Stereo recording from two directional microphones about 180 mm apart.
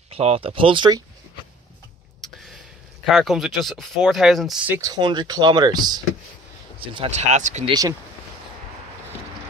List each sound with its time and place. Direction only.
0.1 s speech: 35° right (ahead or behind)
3.1 s speech: centre (ahead or behind); by 7.7 s 40° right (ahead or behind)